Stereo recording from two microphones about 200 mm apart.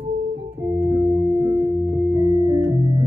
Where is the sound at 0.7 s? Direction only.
15° right (ahead or behind).